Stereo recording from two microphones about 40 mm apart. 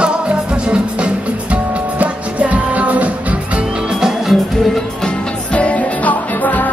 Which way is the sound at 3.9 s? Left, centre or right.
Centre.